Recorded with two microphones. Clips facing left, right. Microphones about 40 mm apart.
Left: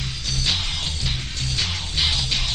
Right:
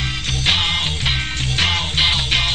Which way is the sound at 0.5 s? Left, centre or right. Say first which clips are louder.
Right 9 dB; right.